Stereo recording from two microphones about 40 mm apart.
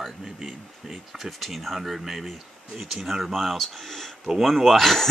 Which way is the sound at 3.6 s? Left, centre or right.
Centre.